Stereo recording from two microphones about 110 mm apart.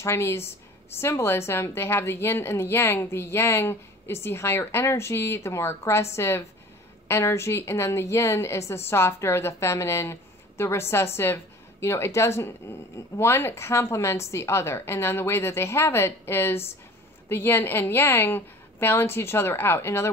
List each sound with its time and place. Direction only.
0.0 s a woman's voice: 25° left (ahead or behind)